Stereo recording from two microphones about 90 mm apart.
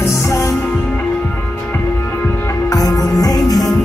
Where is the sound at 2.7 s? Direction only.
40° left (ahead or behind).